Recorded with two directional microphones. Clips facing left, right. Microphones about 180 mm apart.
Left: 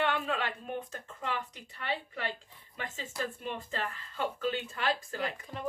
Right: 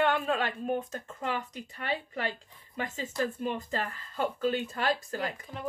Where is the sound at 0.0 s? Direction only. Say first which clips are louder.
Right 4 dB; 45° right (ahead or behind).